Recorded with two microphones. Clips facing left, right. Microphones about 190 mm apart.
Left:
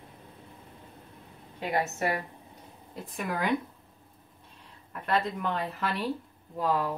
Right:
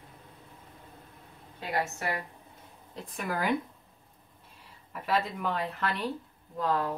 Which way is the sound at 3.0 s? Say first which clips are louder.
Even; centre (ahead or behind).